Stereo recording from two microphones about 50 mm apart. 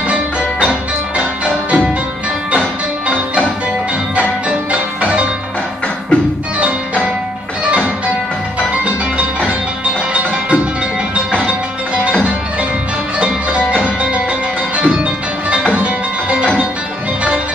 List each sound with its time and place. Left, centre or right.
0.1 s music: right
5.0 s music: right
10.1 s music: right
13.2 s music: right